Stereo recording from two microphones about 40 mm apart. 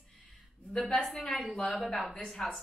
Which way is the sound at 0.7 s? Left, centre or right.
Centre.